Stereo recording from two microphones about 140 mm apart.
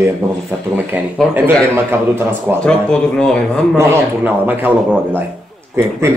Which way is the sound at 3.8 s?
15° right (ahead or behind).